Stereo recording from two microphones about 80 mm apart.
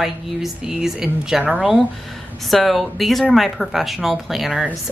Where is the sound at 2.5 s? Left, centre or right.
Centre.